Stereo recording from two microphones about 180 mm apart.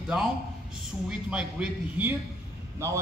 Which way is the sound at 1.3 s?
5° right (ahead or behind).